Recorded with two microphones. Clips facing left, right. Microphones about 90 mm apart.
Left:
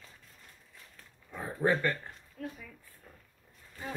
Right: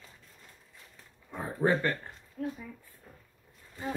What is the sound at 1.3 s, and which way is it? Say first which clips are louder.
A child's voice: right 1 dB; 20° right (ahead or behind).